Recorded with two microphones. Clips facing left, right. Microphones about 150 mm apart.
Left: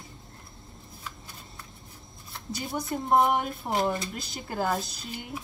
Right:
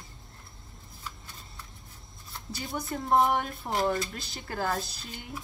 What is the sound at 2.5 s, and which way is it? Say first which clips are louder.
A woman's voice: left 3 dB; 20° left (ahead or behind).